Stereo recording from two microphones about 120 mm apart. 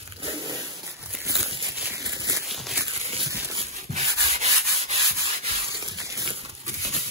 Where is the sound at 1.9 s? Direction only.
30° right (ahead or behind).